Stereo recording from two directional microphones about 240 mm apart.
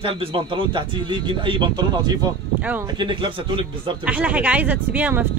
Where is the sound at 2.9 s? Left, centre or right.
Centre.